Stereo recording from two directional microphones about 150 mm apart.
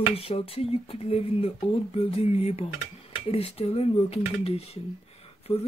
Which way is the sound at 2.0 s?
40° left (ahead or behind).